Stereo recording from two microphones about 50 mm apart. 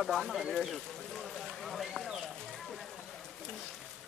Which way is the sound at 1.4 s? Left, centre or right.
Centre.